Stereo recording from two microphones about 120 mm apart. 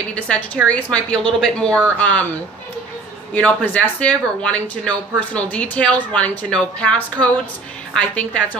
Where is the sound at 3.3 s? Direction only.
10° left (ahead or behind).